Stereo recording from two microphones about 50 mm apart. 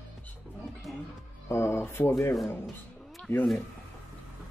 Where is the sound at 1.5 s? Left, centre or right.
Left.